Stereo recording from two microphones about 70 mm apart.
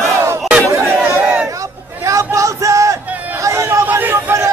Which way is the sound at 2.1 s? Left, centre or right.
Right.